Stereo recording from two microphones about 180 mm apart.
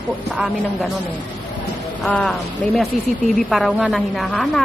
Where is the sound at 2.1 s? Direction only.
5° left (ahead or behind).